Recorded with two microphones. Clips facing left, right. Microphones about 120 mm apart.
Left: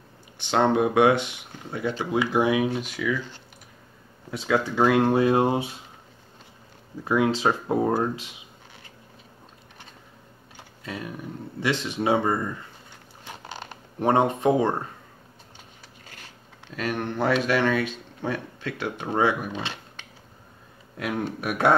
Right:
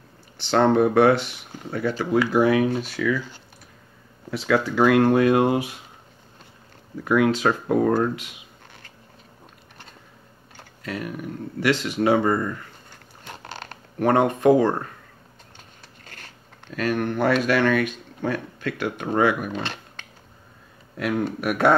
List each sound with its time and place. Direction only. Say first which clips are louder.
0.4 s speech: right 3 dB; 15° left (ahead or behind)
4.3 s speech: right 3 dB; 20° left (ahead or behind)
7.1 s speech: right 3 dB; 25° left (ahead or behind)
10.8 s speech: right 4 dB; 25° left (ahead or behind)
13.2 s a sound: right 1 dB; 10° left (ahead or behind)
13.9 s speech: right 2 dB; 20° left (ahead or behind)
16.1 s biting: right 2 dB; 10° left (ahead or behind)
16.8 s speech: right 4 dB; 20° left (ahead or behind)
19.5 s a sound: right 3 dB; 5° left (ahead or behind)
21.0 s speech: right 4 dB; 20° left (ahead or behind)